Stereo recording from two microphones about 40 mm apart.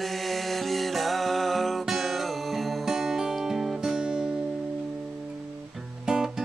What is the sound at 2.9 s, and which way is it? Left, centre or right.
Music, centre.